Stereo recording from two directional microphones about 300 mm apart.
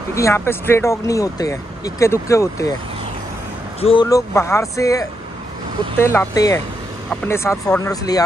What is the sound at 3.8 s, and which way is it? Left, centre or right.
Speech, centre.